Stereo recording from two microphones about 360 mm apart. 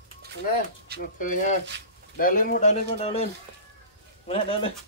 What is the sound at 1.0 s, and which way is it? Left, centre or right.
Speech, left.